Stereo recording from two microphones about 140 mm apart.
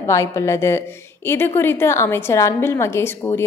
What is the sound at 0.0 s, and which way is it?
A woman's voice, 20° left (ahead or behind).